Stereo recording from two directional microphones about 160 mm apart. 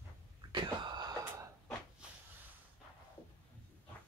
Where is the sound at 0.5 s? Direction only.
30° right (ahead or behind).